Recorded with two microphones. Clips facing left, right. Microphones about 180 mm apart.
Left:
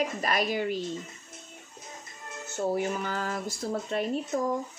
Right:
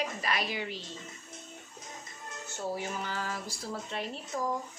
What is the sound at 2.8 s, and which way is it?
A woman's voice, 50° left (ahead or behind).